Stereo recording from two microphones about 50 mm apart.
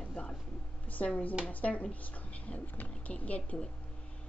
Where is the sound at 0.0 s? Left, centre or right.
Left.